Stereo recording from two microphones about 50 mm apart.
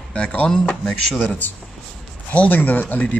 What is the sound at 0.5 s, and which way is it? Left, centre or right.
Speech, centre.